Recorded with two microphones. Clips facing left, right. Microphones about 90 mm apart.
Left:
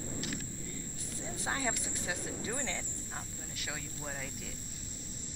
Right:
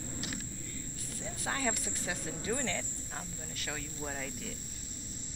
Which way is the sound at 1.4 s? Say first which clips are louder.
Right 1 dB; 15° left (ahead or behind).